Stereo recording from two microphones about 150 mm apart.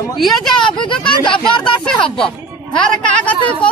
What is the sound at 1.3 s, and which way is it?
Speech, 5° left (ahead or behind).